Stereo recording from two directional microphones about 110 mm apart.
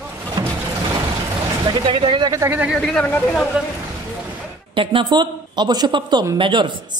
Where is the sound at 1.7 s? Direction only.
50° right (ahead or behind).